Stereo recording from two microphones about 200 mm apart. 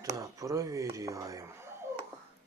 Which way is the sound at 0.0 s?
15° right (ahead or behind).